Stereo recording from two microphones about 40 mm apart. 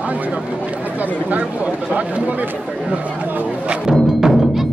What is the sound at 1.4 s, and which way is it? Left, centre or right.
Speech, right.